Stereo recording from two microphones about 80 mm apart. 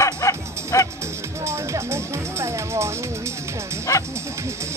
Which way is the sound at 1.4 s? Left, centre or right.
Right.